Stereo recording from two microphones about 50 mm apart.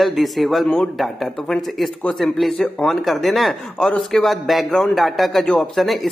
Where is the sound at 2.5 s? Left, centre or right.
Left.